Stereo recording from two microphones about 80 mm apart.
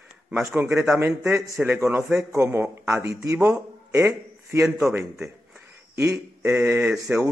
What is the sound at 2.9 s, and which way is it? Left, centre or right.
A man's voice, right.